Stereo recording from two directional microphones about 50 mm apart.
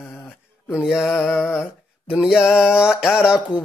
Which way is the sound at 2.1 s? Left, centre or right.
Centre.